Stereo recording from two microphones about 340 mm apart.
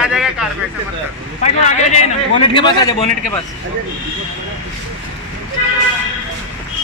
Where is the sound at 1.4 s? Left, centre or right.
Centre.